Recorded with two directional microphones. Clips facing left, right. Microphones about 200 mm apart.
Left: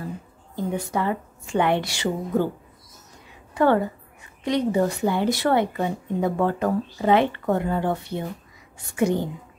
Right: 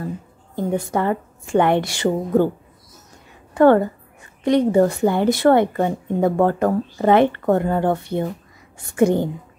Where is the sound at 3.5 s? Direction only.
50° right (ahead or behind).